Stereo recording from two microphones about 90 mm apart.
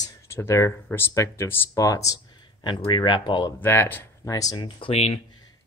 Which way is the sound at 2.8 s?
65° left (ahead or behind).